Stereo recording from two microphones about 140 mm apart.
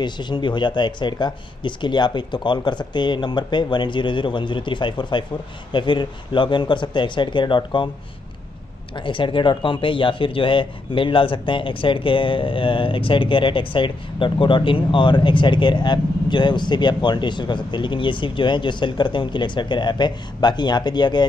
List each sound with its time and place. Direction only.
0.0 s speech: 30° left (ahead or behind)
8.9 s speech: 35° left (ahead or behind)